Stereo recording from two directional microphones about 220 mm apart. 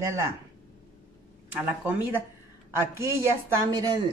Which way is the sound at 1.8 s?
10° right (ahead or behind).